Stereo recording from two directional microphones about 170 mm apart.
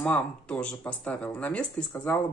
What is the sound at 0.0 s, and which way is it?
Speech, 5° left (ahead or behind).